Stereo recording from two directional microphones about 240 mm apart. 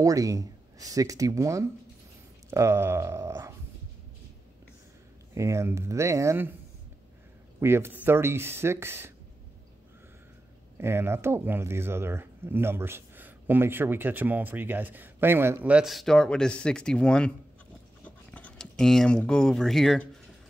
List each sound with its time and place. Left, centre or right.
0.0 s speech: centre
5.3 s speech: centre
7.6 s speech: centre
10.8 s speech: centre
18.0 s a sound: centre